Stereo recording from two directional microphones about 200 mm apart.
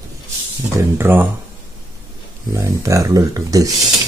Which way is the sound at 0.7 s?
10° right (ahead or behind).